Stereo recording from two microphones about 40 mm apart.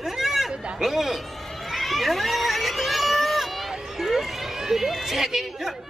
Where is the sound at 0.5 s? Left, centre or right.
Right.